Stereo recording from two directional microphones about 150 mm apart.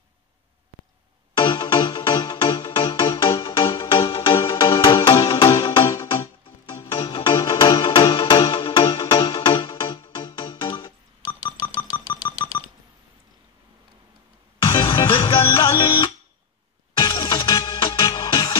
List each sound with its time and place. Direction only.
1.3 s music: 30° left (ahead or behind)
14.6 s music: 30° left (ahead or behind)